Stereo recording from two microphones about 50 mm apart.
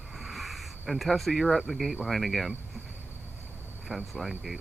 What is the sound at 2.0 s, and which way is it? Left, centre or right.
Speech, centre.